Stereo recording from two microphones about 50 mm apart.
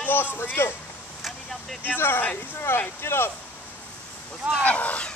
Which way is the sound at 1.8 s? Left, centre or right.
Left.